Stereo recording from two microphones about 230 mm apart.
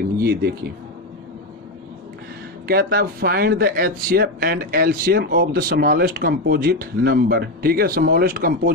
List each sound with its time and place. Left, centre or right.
0.2 s speech: right
2.7 s speech: right